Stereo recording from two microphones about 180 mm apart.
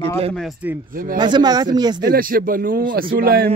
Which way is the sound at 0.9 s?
50° right (ahead or behind).